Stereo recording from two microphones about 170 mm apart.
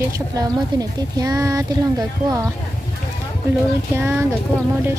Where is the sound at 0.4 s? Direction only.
20° right (ahead or behind).